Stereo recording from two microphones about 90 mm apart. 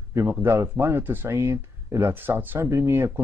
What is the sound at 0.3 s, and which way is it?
Speech, 25° right (ahead or behind).